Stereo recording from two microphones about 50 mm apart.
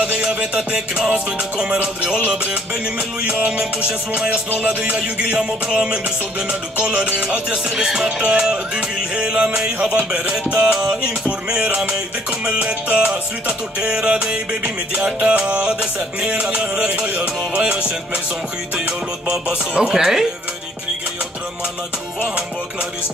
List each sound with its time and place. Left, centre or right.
0.0 s music: centre
3.3 s music: centre
4.9 s music: centre
19.2 s music: centre